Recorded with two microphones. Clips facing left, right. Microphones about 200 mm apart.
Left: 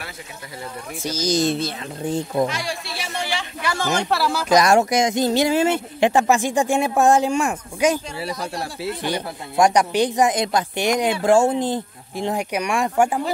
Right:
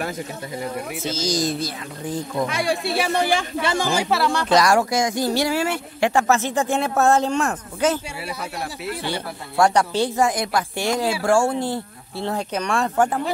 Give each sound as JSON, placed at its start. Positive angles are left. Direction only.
{"t": 1.0, "sound": "speech", "side_deg": 15}
{"t": 2.5, "sound": "speech", "side_deg": -55}
{"t": 3.6, "sound": "speech", "side_deg": -15}
{"t": 4.6, "sound": "speech", "side_deg": 20}
{"t": 8.3, "sound": "speech", "side_deg": -5}
{"t": 9.0, "sound": "speech", "side_deg": 15}